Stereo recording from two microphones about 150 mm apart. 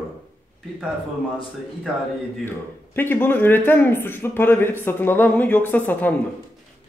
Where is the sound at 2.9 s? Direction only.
15° left (ahead or behind).